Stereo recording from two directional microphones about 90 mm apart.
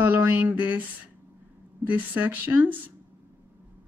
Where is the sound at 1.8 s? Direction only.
20° right (ahead or behind).